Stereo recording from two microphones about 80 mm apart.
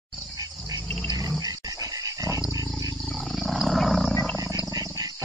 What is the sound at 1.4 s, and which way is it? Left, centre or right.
Dog, right.